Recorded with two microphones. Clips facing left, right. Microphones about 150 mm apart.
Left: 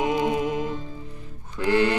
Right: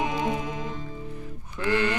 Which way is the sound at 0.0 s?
20° left (ahead or behind).